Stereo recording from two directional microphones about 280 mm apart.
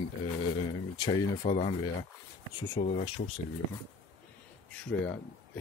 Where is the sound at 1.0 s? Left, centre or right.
Centre.